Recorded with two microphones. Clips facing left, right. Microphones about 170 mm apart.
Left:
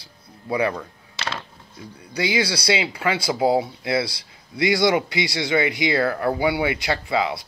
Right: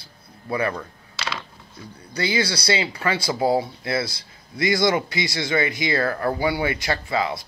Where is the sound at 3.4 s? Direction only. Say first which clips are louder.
Left 1 dB; 20° left (ahead or behind).